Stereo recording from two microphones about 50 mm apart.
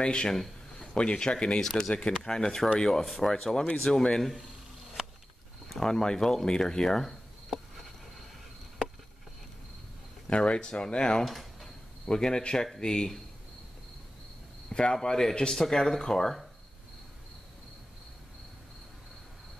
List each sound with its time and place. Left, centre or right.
0.0 s speech: centre
3.8 s speech: centre
5.7 s speech: centre
10.3 s speech: centre
11.2 s a sound: centre
12.1 s speech: centre
14.7 s speech: centre